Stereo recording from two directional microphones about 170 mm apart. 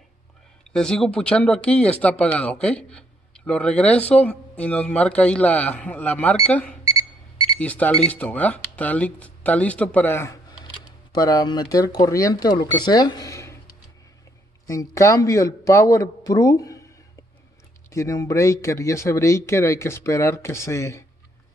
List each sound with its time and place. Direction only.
0.7 s speech: 5° left (ahead or behind)
14.7 s speech: 20° left (ahead or behind)
17.9 s speech: 20° left (ahead or behind)